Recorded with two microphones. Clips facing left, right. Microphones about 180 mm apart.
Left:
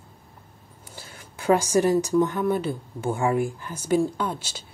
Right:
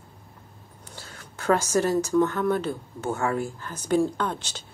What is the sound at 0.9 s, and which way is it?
Speech, 10° left (ahead or behind).